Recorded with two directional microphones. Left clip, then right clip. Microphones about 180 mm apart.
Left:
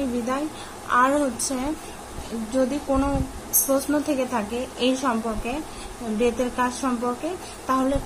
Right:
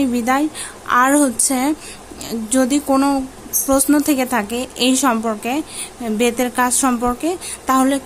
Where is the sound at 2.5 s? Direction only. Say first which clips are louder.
Right 7 dB; 50° right (ahead or behind).